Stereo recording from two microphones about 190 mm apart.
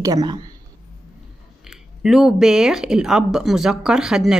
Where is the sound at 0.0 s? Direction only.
20° right (ahead or behind).